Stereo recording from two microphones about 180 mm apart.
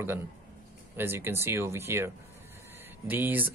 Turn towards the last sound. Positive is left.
turn(degrees=-10)  # may be behind; listen again after turning